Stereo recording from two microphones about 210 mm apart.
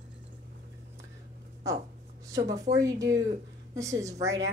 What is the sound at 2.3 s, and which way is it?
Speech, 15° right (ahead or behind).